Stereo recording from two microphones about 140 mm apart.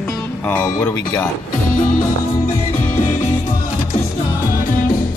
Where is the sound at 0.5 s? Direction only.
15° left (ahead or behind).